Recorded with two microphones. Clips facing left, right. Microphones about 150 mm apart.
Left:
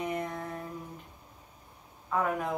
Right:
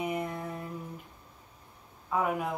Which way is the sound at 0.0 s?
5° right (ahead or behind).